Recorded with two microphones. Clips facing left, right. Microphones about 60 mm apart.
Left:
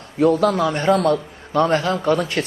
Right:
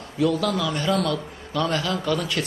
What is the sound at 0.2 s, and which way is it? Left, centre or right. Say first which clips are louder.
A man's voice: left 6 dB; left.